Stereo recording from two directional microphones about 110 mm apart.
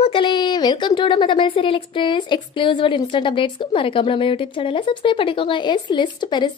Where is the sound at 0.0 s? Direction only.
50° left (ahead or behind).